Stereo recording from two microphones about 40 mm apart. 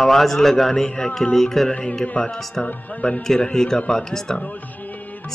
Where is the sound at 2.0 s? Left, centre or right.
Left.